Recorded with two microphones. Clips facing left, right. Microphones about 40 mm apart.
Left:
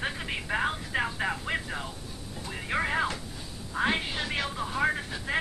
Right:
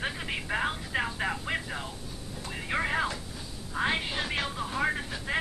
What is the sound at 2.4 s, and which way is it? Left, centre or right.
Music, centre.